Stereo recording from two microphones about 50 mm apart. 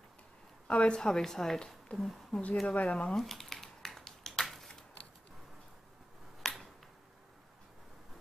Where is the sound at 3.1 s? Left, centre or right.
Centre.